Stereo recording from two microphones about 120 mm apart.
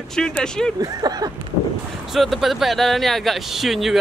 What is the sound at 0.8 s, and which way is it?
Speech, 30° right (ahead or behind).